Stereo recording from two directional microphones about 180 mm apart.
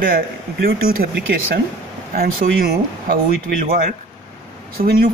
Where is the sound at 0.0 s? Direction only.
60° right (ahead or behind).